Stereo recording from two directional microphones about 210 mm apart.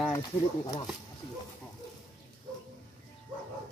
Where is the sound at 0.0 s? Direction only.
15° left (ahead or behind).